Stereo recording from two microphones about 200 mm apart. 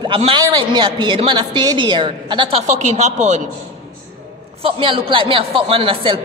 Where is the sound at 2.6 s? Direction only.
35° right (ahead or behind).